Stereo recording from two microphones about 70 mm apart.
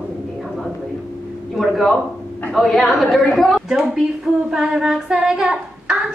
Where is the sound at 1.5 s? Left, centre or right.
Centre.